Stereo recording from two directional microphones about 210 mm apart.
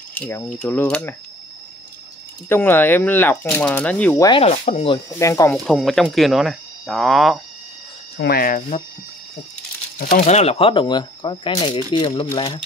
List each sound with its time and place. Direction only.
0.1 s speech: 5° left (ahead or behind)
2.5 s speech: 10° left (ahead or behind)
4.2 s speech: 25° left (ahead or behind)
5.2 s speech: 15° left (ahead or behind)
5.7 s speech: centre (ahead or behind)
8.2 s speech: 45° left (ahead or behind)
9.9 s speech: 40° left (ahead or behind); by 12.3 s 25° left (ahead or behind)